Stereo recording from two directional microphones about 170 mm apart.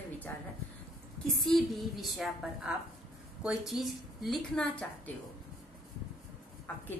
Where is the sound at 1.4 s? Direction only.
Centre (ahead or behind).